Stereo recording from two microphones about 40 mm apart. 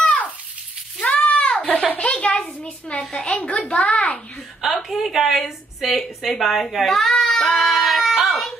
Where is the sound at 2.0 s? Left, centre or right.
Left.